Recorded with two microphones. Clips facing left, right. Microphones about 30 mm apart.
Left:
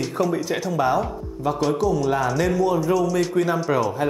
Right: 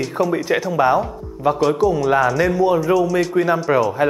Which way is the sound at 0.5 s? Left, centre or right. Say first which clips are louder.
Right 6 dB; centre.